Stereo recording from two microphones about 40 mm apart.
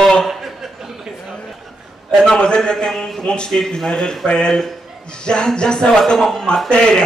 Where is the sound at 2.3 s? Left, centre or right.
Left.